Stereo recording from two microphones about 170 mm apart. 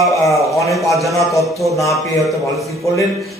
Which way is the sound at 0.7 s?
Centre (ahead or behind).